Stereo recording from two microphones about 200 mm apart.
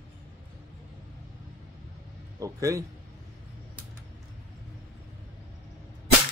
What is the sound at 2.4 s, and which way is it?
Speech, 15° right (ahead or behind).